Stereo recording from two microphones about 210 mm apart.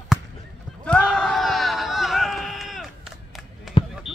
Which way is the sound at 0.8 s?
5° left (ahead or behind).